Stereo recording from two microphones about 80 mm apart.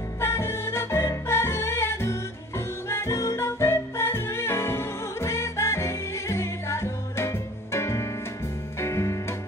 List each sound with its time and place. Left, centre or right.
0.2 s music: left